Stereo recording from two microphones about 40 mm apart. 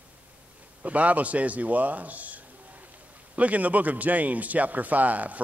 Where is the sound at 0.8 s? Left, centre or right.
Right.